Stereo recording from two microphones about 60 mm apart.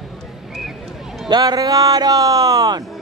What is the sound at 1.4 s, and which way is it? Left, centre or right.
Speech, right.